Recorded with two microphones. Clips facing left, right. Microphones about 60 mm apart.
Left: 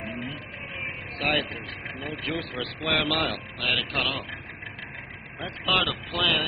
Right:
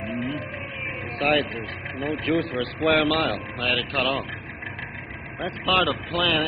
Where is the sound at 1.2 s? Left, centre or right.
Centre.